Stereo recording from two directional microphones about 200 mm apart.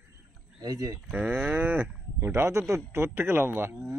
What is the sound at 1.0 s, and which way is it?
Speech, 5° right (ahead or behind).